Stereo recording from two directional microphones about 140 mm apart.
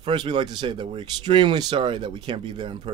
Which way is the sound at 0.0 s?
35° right (ahead or behind).